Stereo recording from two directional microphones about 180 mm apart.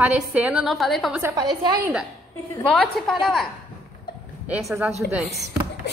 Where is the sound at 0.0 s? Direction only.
10° right (ahead or behind).